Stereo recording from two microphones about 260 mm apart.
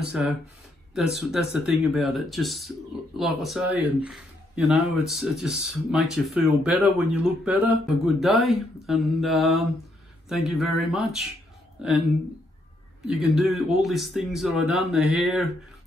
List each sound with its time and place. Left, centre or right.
0.0 s speech: centre
13.0 s speech: centre